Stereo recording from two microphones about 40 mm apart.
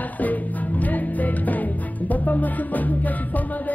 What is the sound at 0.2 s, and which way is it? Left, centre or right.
Music, left.